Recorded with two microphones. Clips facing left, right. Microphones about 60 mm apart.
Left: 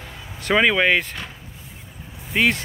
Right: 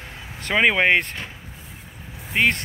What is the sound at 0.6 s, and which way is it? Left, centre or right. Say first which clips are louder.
Speech: even; right.